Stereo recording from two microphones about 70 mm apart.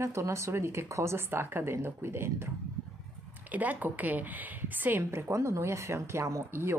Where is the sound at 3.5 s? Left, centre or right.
Right.